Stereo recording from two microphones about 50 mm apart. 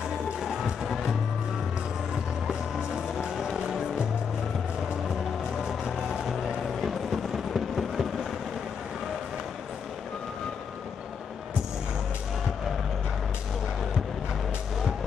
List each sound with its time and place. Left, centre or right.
0.8 s music: centre
3.3 s music: centre
5.7 s vehicle: centre
7.5 s a sound: centre